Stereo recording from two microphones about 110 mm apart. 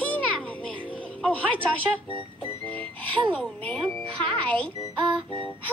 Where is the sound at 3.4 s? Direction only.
10° left (ahead or behind).